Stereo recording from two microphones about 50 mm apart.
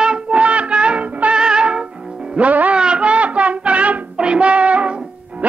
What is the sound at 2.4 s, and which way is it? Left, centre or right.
Music, right.